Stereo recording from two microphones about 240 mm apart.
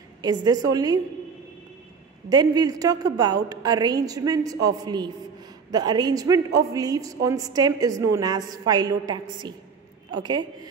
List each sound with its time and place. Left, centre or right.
0.2 s a woman's voice: centre
2.2 s a woman's voice: centre
10.1 s a woman's voice: centre